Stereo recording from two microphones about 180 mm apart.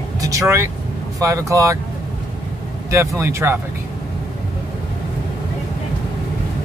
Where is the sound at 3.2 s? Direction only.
15° right (ahead or behind).